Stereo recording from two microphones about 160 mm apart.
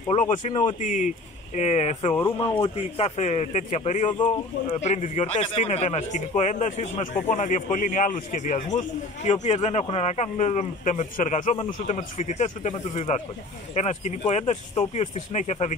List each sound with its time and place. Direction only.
0.1 s speech: 50° left (ahead or behind)
0.5 s speech: 30° left (ahead or behind)
0.7 s speech: 50° left (ahead or behind)
2.1 s speech: 15° left (ahead or behind)
2.4 s speech: 35° left (ahead or behind)
4.1 s speech: 30° left (ahead or behind)
4.7 s speech: 45° left (ahead or behind)